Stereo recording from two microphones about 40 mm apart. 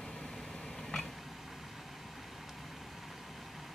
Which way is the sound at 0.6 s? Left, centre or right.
Centre.